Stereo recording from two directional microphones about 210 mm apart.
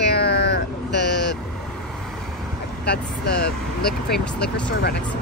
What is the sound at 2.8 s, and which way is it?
Speech, 50° left (ahead or behind).